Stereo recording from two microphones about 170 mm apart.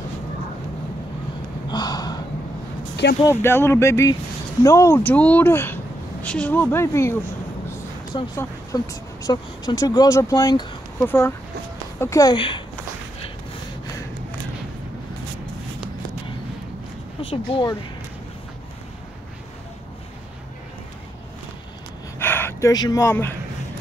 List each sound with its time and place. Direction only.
1.7 s gasp: 25° left (ahead or behind)
3.3 s speech: 15° left (ahead or behind)
8.4 s a woman's voice: 20° left (ahead or behind)
17.3 s a woman's voice: 30° left (ahead or behind)
22.2 s speech: 10° left (ahead or behind)